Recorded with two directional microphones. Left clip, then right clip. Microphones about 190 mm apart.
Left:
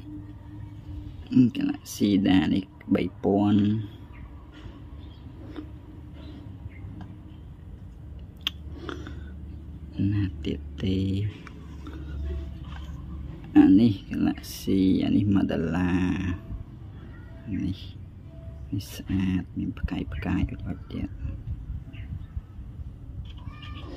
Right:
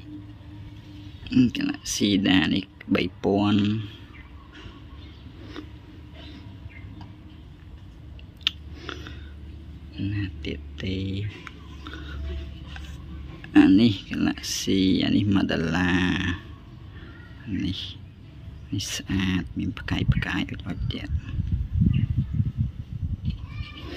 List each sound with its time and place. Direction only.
1.3 s speech: 10° left (ahead or behind)
8.5 s chewing: 30° left (ahead or behind)
9.9 s a sound: 30° left (ahead or behind)
11.4 s a sound: 5° left (ahead or behind)
13.5 s speech: centre (ahead or behind)
17.6 s speech: 5° left (ahead or behind)